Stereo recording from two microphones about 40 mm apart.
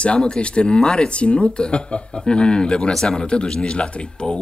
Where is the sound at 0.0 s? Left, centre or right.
Left.